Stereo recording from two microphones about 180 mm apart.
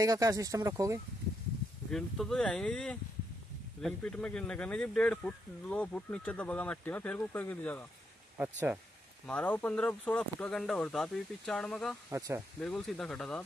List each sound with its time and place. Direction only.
0.0 s speech: 20° right (ahead or behind)
1.9 s speech: centre (ahead or behind)
8.4 s speech: 10° right (ahead or behind)
9.2 s speech: 5° left (ahead or behind)
12.1 s speech: 15° right (ahead or behind)
12.5 s speech: 5° left (ahead or behind)